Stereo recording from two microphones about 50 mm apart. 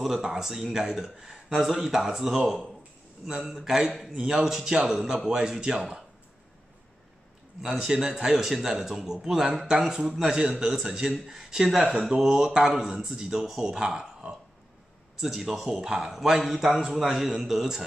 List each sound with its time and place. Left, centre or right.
0.0 s speech: centre
7.6 s a man's voice: centre
10.3 s speech: centre
16.6 s speech: centre
16.9 s a man's voice: centre